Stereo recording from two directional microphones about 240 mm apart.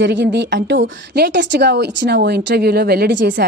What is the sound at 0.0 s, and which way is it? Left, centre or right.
A woman's voice, right.